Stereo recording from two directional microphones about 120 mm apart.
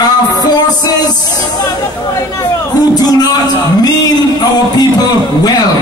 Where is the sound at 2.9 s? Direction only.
35° left (ahead or behind).